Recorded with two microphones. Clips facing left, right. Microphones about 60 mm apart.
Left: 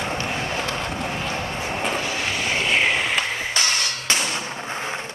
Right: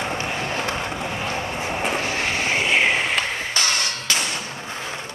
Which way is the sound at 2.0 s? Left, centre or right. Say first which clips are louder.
Right 2 dB; right.